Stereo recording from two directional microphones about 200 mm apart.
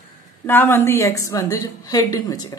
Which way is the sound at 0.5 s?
10° left (ahead or behind).